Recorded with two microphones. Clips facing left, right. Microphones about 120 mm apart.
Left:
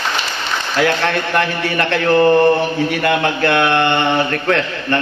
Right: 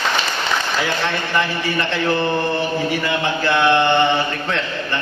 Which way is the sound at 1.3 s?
60° left (ahead or behind).